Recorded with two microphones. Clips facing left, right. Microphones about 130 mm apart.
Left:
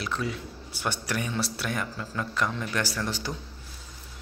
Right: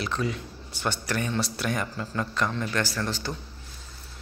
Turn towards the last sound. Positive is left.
turn(degrees=10)  # may be behind; listen again after turning